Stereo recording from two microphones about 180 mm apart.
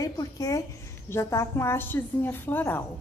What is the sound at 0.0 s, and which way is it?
A woman's voice, 20° left (ahead or behind).